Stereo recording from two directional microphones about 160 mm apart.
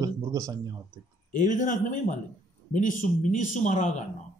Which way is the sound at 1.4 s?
50° left (ahead or behind).